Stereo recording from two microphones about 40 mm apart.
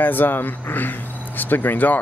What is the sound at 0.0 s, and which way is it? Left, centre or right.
A man's voice, left.